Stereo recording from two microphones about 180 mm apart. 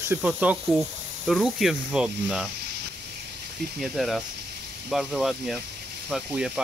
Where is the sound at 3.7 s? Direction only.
Centre (ahead or behind).